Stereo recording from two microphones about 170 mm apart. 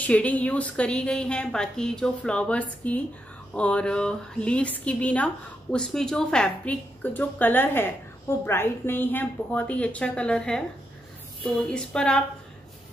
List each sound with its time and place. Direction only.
0.0 s a woman's voice: 10° left (ahead or behind)
11.7 s speech: 5° left (ahead or behind)